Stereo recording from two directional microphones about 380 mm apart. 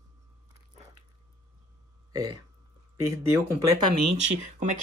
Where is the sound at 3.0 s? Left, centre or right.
Centre.